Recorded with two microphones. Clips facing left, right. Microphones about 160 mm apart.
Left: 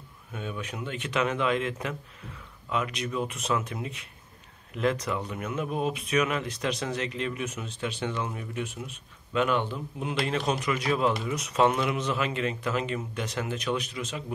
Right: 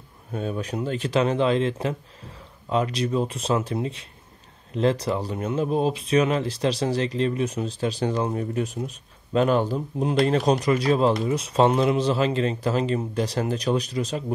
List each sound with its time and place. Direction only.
0.3 s speech: 40° right (ahead or behind)